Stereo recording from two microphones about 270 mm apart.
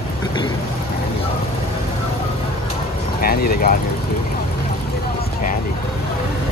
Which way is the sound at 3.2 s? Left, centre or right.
Left.